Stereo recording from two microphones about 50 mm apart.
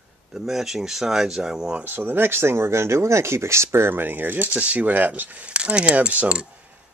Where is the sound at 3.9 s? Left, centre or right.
Right.